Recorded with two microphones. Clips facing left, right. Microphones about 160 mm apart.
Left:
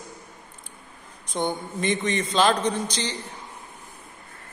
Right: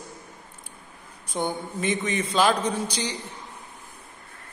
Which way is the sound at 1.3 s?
5° right (ahead or behind).